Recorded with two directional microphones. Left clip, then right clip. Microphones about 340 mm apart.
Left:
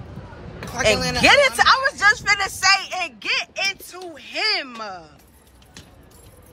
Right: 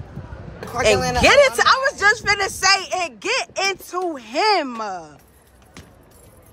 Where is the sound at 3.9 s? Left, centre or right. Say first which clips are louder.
Right 7 dB; centre.